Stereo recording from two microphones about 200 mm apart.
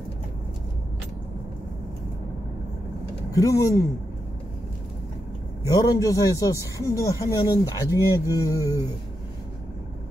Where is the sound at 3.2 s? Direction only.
15° left (ahead or behind).